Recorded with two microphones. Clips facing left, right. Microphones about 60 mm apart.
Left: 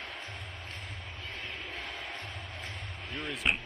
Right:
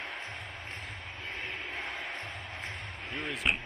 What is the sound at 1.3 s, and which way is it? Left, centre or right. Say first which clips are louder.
Crowd: right 3 dB; right.